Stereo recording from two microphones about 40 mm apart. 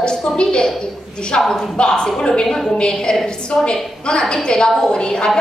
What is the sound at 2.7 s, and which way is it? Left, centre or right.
A woman's voice, centre.